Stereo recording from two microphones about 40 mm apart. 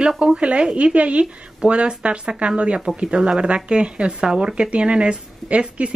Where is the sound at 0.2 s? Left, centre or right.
Right.